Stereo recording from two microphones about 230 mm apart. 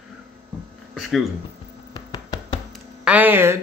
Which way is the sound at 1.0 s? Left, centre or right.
Centre.